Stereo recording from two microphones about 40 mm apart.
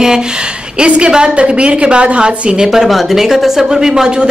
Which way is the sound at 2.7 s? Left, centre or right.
Centre.